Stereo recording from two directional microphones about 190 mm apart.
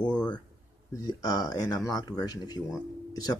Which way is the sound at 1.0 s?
20° left (ahead or behind).